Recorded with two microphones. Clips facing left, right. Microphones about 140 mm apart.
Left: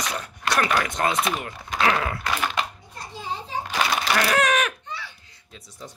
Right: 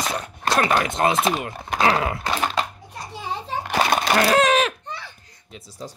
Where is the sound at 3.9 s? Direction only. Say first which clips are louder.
Right 4 dB; 45° right (ahead or behind).